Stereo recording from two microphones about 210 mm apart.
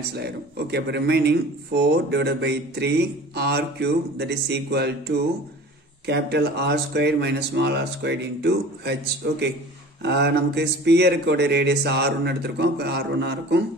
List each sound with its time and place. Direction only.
0.1 s speech: 50° right (ahead or behind)